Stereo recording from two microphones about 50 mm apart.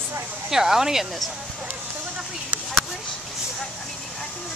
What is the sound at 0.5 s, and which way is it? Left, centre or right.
Speech, centre.